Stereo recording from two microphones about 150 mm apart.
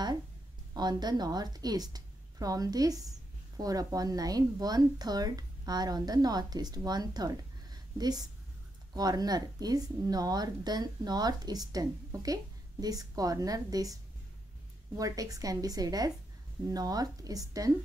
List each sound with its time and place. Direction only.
0.7 s speech: 25° right (ahead or behind)
15.0 s speech: 25° right (ahead or behind)